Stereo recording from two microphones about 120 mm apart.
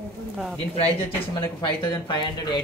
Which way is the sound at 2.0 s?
40° left (ahead or behind).